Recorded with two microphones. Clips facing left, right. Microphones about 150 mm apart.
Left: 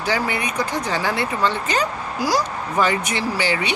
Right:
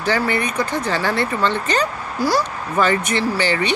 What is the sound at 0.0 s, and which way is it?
Speech, 10° left (ahead or behind).